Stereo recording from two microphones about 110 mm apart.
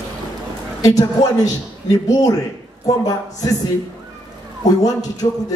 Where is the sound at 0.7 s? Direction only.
30° left (ahead or behind).